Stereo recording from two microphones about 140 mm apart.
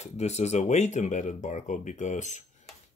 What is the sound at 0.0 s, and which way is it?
Speech, 50° left (ahead or behind).